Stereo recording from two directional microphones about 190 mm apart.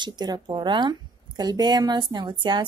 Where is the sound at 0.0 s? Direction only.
20° right (ahead or behind).